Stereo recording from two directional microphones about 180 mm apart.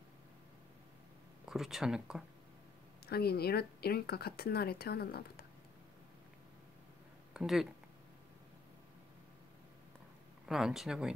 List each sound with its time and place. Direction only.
1.5 s speech: centre (ahead or behind)
3.1 s speech: 60° left (ahead or behind)
7.3 s speech: centre (ahead or behind)
10.4 s speech: centre (ahead or behind)